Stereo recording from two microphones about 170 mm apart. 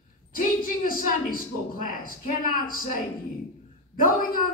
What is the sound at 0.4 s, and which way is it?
A woman's voice, 55° left (ahead or behind).